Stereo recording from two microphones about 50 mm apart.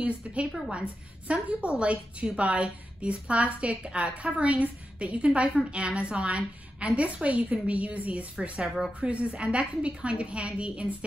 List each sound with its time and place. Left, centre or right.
0.0 s a woman's voice: right
8.6 s speech: centre
9.0 s a woman's voice: right